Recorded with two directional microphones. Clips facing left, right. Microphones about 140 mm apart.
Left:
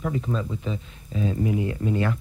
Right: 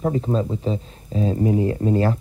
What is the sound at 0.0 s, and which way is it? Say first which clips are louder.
Speech: right 6 dB; 35° right (ahead or behind).